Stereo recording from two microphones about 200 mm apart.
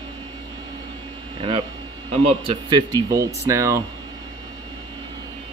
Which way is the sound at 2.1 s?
30° right (ahead or behind).